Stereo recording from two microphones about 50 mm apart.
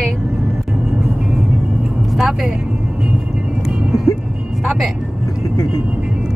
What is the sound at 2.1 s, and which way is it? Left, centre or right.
Vehicle, centre.